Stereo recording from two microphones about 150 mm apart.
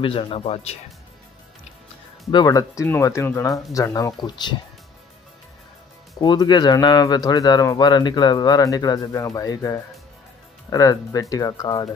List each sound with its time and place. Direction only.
0.0 s speech: 35° left (ahead or behind)
2.3 s speech: 25° left (ahead or behind)
6.2 s speech: 25° left (ahead or behind)